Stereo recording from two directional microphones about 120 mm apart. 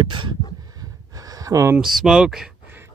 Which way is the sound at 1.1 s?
30° right (ahead or behind).